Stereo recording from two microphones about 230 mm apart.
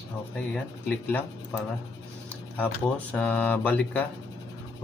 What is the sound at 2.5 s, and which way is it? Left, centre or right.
Speech, centre.